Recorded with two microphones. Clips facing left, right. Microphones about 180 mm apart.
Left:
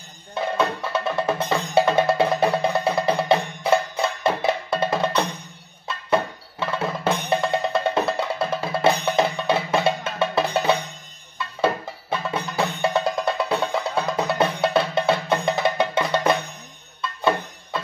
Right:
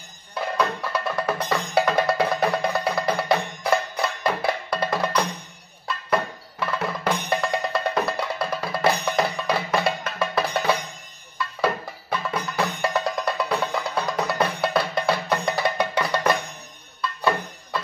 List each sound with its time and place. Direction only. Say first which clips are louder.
0.3 s music: left 2 dB; 25° left (ahead or behind)